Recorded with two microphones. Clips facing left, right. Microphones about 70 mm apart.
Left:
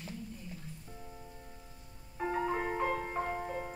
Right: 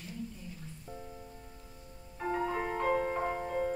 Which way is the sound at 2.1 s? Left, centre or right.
Centre.